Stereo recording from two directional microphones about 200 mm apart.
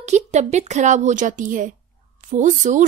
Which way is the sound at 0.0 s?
35° right (ahead or behind).